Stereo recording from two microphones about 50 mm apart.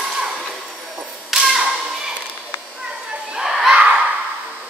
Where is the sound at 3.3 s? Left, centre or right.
Centre.